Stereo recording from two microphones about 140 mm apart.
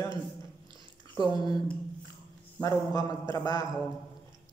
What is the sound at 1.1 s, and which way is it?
Speech, 30° left (ahead or behind).